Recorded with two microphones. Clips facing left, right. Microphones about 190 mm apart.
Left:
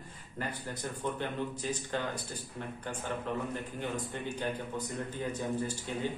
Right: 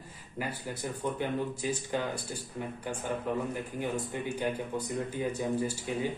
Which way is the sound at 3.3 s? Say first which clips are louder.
Right 3 dB; 10° right (ahead or behind).